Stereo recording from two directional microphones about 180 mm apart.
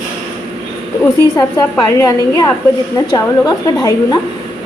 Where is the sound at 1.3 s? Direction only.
15° left (ahead or behind).